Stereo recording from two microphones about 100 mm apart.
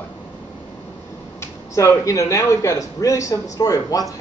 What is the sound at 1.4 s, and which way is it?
Speech, 30° left (ahead or behind).